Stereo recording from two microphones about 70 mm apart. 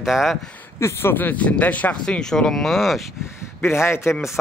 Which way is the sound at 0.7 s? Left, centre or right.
Left.